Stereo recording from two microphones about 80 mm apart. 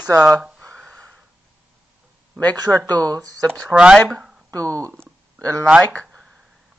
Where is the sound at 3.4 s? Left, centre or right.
Centre.